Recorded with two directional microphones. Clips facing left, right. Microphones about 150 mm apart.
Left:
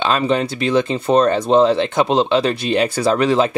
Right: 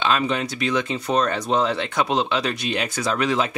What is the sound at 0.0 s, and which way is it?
Speech, 35° left (ahead or behind).